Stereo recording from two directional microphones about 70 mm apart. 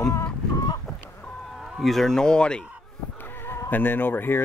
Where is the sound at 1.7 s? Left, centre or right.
Centre.